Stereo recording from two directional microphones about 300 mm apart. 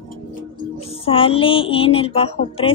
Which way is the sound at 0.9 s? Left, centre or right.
Centre.